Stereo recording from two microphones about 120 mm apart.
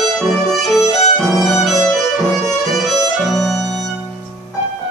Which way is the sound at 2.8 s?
Centre (ahead or behind).